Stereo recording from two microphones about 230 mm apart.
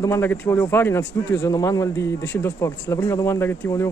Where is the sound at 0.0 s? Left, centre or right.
Centre.